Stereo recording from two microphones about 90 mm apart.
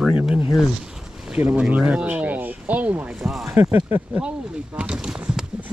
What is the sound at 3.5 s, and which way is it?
Speech, 25° right (ahead or behind).